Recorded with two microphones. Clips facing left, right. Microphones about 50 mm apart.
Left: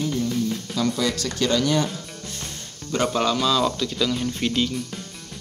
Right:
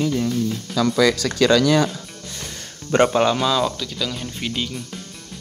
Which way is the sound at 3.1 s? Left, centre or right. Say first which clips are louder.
Right 3 dB; right.